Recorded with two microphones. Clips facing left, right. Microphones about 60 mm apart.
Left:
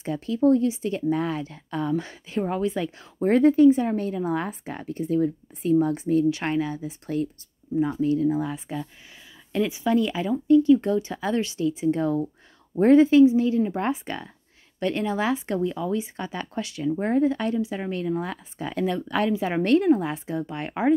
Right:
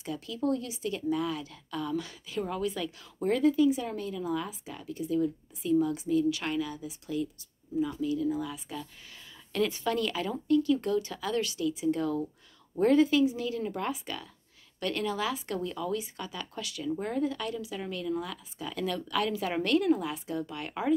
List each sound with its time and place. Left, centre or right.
0.0 s speech: left
9.5 s speech: centre